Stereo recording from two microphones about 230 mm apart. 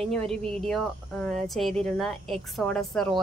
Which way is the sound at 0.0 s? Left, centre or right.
Centre.